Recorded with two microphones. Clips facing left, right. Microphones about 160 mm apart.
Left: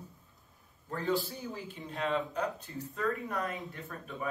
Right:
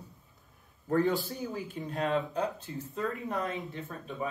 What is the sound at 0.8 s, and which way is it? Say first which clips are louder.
Speech: right 8 dB; 60° right (ahead or behind).